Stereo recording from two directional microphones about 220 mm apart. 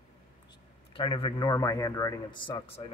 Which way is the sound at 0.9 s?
25° left (ahead or behind).